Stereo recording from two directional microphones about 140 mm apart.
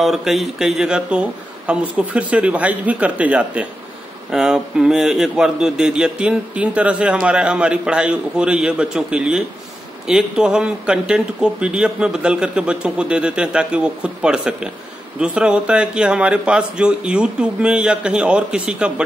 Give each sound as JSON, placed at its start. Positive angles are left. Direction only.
{"t": 0.0, "sound": "a man's voice", "side_deg": 0}